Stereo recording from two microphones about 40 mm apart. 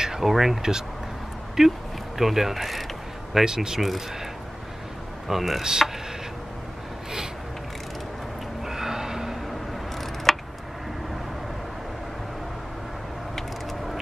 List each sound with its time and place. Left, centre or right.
0.2 s speech: centre
1.6 s speech: centre
3.3 s speech: centre
5.3 s speech: centre
5.6 s speech: centre
8.6 s snort: centre
10.3 s a sound: centre